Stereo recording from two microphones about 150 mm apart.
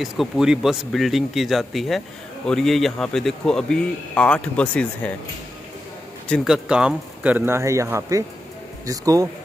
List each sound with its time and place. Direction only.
0.0 s speech: 5° right (ahead or behind)
6.2 s speech: centre (ahead or behind); by 9.3 s 25° right (ahead or behind)